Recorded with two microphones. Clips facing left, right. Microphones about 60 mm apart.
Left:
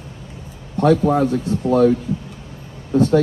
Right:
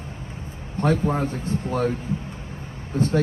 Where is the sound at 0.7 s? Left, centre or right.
Right.